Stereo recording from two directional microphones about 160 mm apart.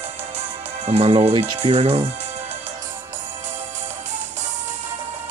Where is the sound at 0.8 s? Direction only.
40° right (ahead or behind).